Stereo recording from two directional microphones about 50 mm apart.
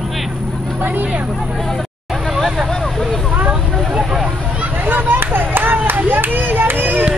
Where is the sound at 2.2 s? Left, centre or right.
Centre.